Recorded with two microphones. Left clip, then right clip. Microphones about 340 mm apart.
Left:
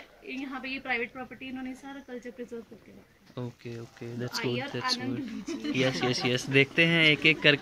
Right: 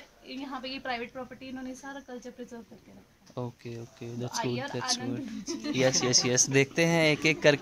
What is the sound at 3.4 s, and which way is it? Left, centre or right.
Speech, centre.